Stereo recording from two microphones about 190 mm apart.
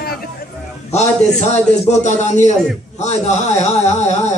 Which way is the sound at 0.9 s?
35° left (ahead or behind).